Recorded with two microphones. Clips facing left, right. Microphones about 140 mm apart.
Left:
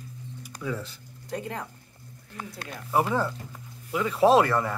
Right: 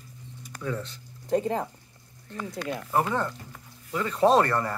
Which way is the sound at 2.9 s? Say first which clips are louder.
Left 2 dB; 5° left (ahead or behind).